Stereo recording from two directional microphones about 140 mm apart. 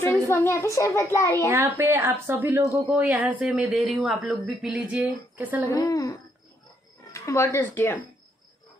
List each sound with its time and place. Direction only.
0.3 s a child's voice: 20° left (ahead or behind)
1.5 s speech: 15° right (ahead or behind)
5.7 s a child's voice: 25° left (ahead or behind)